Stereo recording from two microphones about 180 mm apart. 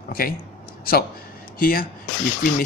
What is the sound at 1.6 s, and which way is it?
Speech, 55° left (ahead or behind).